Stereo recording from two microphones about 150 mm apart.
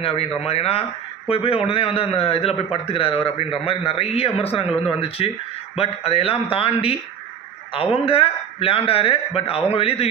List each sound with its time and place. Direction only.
0.0 s speech: 40° left (ahead or behind)